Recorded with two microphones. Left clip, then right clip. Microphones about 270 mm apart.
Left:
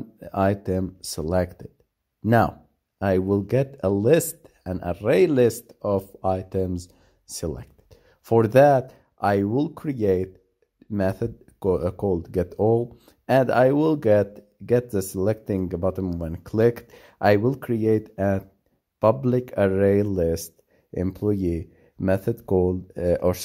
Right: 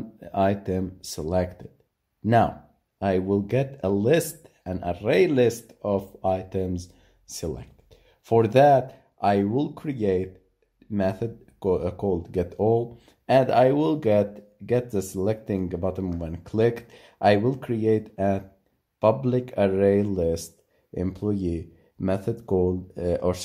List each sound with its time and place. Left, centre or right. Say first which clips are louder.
0.2 s speech: even; left